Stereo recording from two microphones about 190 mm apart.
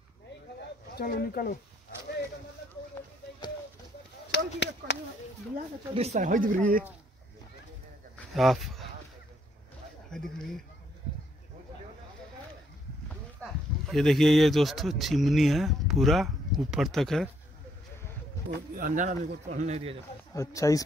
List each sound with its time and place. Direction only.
0.6 s a sound: 55° left (ahead or behind)
4.3 s speech: 65° left (ahead or behind)
5.9 s speech: 35° right (ahead or behind)
8.3 s speech: centre (ahead or behind)
13.4 s speech: centre (ahead or behind)
18.8 s speech: 45° right (ahead or behind)
20.3 s speech: 15° left (ahead or behind)